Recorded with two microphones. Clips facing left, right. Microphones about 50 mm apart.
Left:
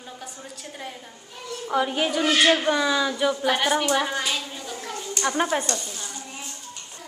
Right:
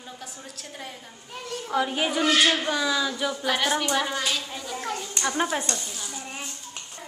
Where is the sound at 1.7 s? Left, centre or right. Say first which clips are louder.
Left 2 dB; centre.